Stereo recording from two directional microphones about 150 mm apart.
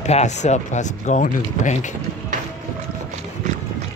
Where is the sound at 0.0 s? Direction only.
50° left (ahead or behind).